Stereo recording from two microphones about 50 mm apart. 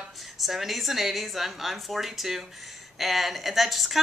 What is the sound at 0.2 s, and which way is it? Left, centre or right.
Speech, centre.